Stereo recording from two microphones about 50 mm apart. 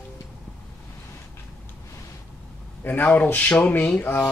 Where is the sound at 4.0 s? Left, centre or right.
Left.